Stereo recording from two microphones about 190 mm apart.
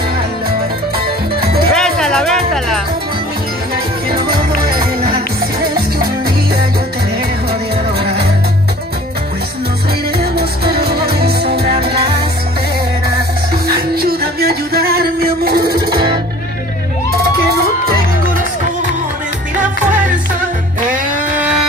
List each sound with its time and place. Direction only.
1.7 s music: 5° left (ahead or behind)
10.1 s music: 55° right (ahead or behind)
13.7 s music: 55° right (ahead or behind)